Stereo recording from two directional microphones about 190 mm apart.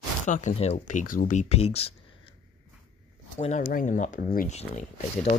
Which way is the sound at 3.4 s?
35° left (ahead or behind).